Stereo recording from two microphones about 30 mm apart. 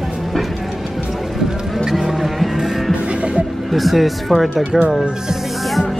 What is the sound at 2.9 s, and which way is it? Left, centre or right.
Music, right.